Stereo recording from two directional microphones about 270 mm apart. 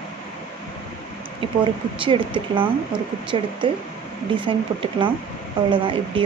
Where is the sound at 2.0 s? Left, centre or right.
Centre.